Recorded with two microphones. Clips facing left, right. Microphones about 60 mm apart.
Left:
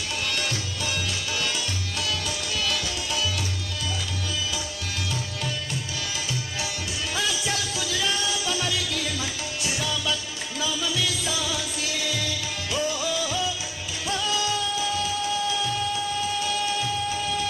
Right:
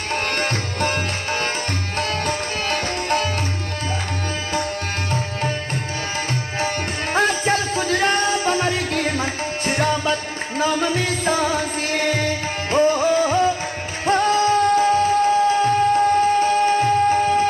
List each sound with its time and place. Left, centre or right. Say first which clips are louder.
0.1 s tabla: right 8 dB; right
2.0 s music: right 8 dB; right
7.2 s music: right 10 dB; right